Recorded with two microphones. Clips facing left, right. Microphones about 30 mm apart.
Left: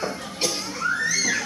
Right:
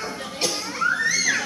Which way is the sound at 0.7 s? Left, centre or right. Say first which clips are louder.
Right 4 dB; centre.